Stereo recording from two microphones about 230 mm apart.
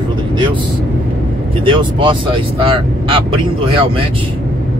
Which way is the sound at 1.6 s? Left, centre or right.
Right.